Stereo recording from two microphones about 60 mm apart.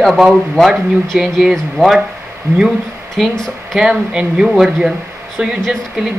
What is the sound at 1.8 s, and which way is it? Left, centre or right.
Speech, centre.